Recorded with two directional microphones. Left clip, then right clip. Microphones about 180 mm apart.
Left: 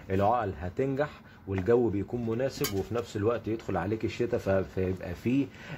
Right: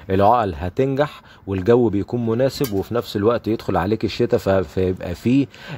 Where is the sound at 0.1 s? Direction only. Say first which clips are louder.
Right 11 dB; 50° right (ahead or behind).